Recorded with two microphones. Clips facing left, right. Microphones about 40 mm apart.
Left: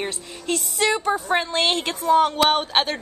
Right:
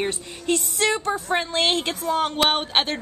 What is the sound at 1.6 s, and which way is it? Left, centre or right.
Speech, centre.